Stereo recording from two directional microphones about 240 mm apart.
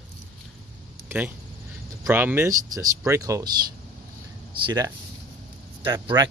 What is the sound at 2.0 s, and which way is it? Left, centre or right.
Speech, centre.